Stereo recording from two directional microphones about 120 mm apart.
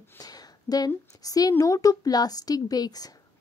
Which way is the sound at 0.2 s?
30° left (ahead or behind).